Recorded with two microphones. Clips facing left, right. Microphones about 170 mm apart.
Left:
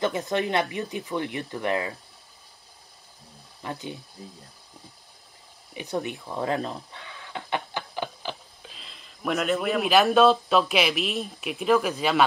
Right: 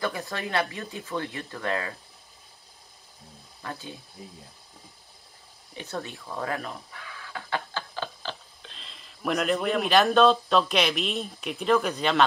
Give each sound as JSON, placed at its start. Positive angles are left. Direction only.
{"t": 0.0, "sound": "speech", "side_deg": 20}
{"t": 3.6, "sound": "speech", "side_deg": 20}
{"t": 5.8, "sound": "speech", "side_deg": 15}